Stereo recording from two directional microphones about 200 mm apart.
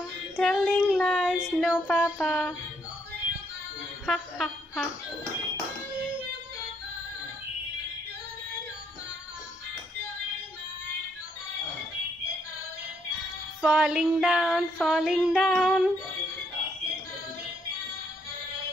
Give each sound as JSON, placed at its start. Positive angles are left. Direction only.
{"t": 0.4, "sound": "child singing", "side_deg": 0}
{"t": 2.2, "sound": "child singing", "side_deg": 0}
{"t": 4.0, "sound": "a sound", "side_deg": 0}
{"t": 13.6, "sound": "child singing", "side_deg": -5}